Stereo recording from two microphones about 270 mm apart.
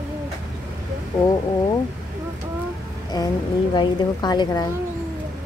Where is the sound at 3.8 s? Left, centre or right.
Centre.